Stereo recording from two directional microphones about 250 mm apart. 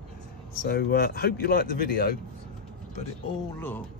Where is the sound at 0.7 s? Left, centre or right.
Left.